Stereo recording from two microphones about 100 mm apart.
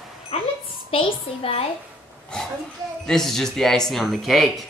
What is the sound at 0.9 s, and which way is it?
Speech, 65° left (ahead or behind).